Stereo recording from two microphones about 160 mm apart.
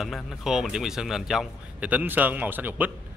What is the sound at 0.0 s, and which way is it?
A man's voice, centre (ahead or behind).